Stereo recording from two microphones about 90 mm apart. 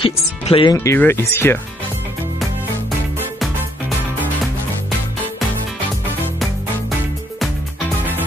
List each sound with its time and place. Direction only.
0.0 s speech: 85° left
0.7 s speech: 25° left (ahead or behind)